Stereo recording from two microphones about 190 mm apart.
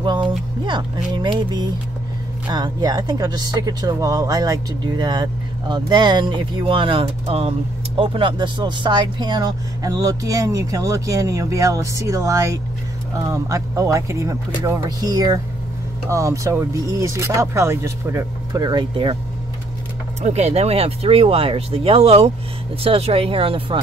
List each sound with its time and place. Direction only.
0.0 s a sound: 25° right (ahead or behind)
0.7 s speech: 25° right (ahead or behind)
20.2 s speech: 35° right (ahead or behind)